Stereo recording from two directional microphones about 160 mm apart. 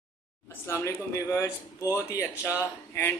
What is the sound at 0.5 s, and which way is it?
A man's voice, 15° left (ahead or behind).